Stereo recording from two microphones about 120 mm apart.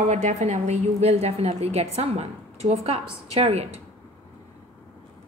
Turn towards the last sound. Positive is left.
turn(degrees=-60)  # may be behind; listen again after turning